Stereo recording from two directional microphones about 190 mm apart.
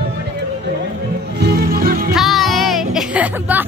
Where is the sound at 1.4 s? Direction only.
55° right (ahead or behind).